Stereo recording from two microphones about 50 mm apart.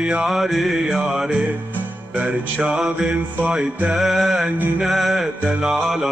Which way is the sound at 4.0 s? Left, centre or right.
Centre.